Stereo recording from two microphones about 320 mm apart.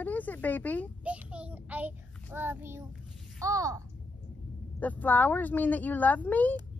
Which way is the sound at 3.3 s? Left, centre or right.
Centre.